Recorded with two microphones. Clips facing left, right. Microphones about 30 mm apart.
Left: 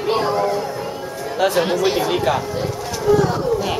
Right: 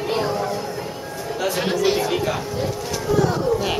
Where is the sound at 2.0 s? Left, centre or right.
Centre.